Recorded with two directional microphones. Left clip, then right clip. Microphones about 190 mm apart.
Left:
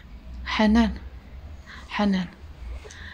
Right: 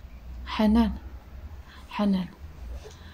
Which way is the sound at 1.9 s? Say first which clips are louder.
Left 3 dB; 10° left (ahead or behind).